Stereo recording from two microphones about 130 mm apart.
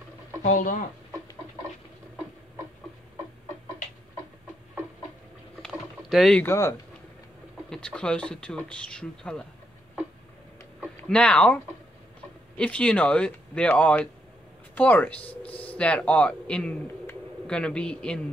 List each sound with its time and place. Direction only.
0.4 s speech: 75° left (ahead or behind)
5.6 s rowboat: centre (ahead or behind)
6.4 s speech: 25° left (ahead or behind)
7.7 s speech: 5° left (ahead or behind)
11.1 s speech: 10° left (ahead or behind)